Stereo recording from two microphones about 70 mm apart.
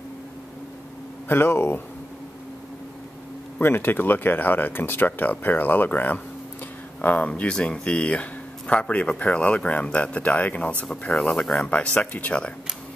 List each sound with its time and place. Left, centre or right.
1.3 s speech: left
3.5 s speech: left
10.9 s speech: centre
11.6 s speech: centre